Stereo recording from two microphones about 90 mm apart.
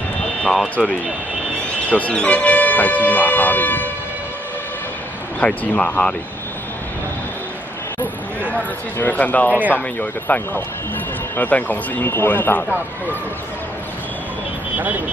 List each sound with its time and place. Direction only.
0.4 s speech: 5° left (ahead or behind)
5.4 s speech: 20° left (ahead or behind)
8.5 s speech: 20° left (ahead or behind)
9.5 s speech: 15° right (ahead or behind)
9.8 s speech: 20° left (ahead or behind)